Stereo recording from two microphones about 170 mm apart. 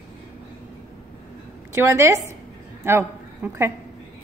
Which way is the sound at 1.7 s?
15° right (ahead or behind).